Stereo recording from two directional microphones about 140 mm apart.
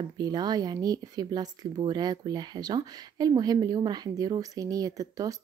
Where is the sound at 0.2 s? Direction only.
30° right (ahead or behind).